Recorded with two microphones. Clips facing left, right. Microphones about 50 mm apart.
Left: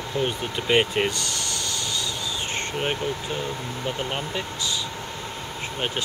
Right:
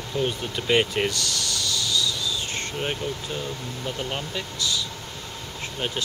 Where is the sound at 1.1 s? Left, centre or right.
Left.